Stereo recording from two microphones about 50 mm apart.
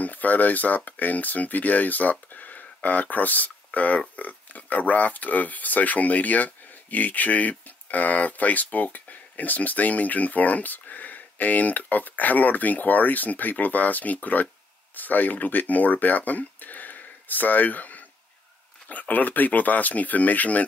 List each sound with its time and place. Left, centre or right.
0.0 s speech: left